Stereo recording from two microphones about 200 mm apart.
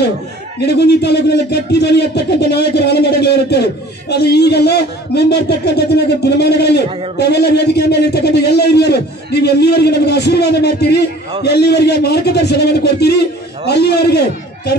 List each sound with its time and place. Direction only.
0.7 s speech: 55° left (ahead or behind)